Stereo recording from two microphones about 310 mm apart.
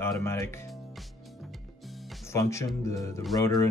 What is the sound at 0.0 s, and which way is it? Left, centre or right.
Speech, centre.